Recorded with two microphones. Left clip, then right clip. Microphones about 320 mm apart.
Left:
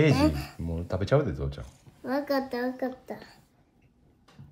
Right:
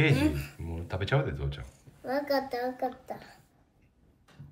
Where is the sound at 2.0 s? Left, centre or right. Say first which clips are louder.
Left 1 dB; left.